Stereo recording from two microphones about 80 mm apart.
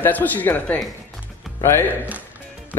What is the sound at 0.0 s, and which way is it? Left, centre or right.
Speech, left.